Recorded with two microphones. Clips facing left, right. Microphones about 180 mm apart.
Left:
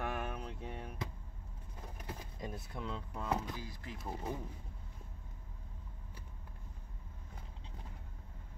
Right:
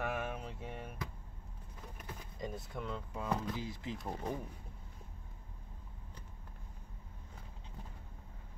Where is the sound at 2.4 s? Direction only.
Centre (ahead or behind).